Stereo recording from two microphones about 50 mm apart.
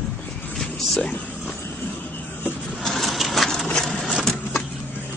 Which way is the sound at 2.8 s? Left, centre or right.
Centre.